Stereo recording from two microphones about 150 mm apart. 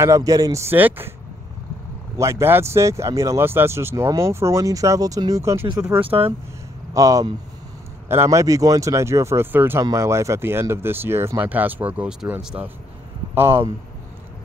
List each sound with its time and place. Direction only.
0.0 s speech: 20° right (ahead or behind)
2.1 s speech: 20° right (ahead or behind)